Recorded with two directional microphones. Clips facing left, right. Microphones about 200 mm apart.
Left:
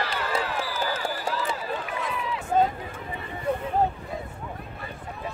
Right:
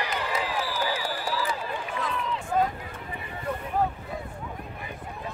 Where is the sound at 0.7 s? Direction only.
10° right (ahead or behind).